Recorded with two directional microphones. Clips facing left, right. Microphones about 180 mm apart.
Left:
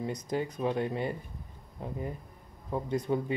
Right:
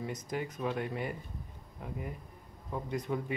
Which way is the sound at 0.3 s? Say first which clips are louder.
Left 4 dB; 30° left (ahead or behind).